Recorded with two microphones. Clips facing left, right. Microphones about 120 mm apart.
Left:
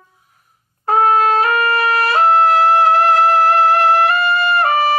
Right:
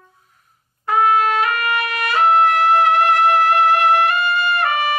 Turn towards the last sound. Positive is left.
turn(degrees=35)  # may be behind; listen again after turning